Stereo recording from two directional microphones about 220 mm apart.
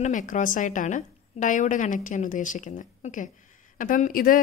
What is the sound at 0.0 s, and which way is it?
A woman's voice, 35° left (ahead or behind).